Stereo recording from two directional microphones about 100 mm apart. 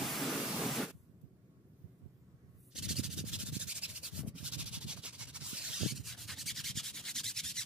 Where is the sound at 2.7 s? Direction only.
5° right (ahead or behind).